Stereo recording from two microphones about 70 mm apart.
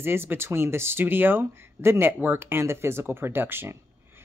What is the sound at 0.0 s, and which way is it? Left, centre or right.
Speech, right.